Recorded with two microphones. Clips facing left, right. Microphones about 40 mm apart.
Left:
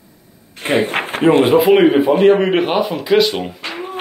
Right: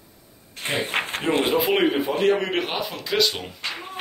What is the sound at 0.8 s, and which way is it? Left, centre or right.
A man's voice, centre.